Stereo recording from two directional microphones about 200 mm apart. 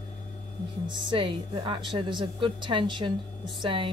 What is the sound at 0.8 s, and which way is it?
Speech, 25° right (ahead or behind).